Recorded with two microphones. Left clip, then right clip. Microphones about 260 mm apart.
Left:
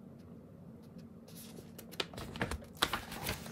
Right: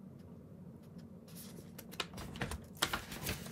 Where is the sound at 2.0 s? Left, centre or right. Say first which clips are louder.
Left 3 dB; centre.